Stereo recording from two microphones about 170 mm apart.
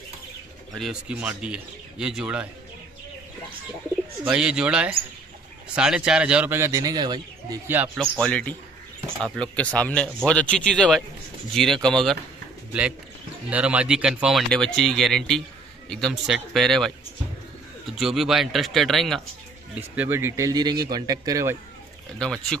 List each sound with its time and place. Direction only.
0.7 s speech: 5° right (ahead or behind)
4.2 s speech: 5° right (ahead or behind); by 7.5 s 25° right (ahead or behind)
7.6 s speech: 10° right (ahead or behind)
8.0 s a man's voice: 5° left (ahead or behind)
13.5 s speech: 5° right (ahead or behind)
17.9 s speech: centre (ahead or behind)
19.7 s speech: 10° right (ahead or behind)
22.2 s speech: 5° left (ahead or behind)